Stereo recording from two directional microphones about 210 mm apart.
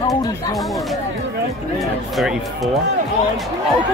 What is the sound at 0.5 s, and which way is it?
Speech, centre (ahead or behind).